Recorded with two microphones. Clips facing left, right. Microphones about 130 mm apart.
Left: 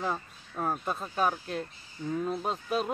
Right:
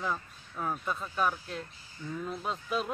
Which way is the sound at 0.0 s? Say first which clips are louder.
Left 2 dB; 35° left (ahead or behind).